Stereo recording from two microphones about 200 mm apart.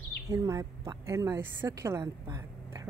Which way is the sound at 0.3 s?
15° right (ahead or behind).